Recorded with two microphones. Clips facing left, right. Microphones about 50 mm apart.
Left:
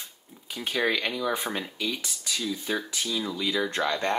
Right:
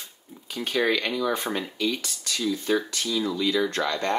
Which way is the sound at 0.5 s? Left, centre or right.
Centre.